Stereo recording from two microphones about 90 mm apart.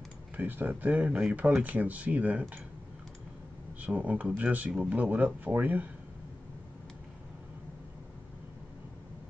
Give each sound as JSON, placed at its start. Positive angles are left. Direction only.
{"t": 0.4, "sound": "speech", "side_deg": -20}
{"t": 3.8, "sound": "speech", "side_deg": -15}